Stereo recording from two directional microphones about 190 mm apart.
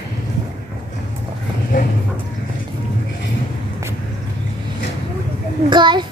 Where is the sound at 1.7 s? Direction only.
45° left (ahead or behind).